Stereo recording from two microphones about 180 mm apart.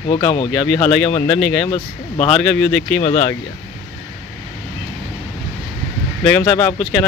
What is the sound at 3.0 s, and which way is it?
Speech, 45° left (ahead or behind).